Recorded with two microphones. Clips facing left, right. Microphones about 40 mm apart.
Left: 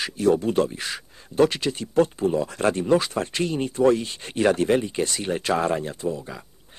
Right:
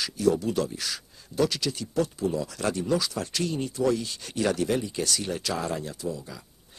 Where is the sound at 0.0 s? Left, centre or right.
Left.